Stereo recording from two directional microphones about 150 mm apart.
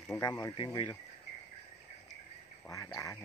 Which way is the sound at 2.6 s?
20° left (ahead or behind).